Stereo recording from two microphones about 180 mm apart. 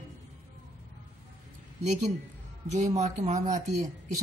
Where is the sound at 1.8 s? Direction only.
40° right (ahead or behind).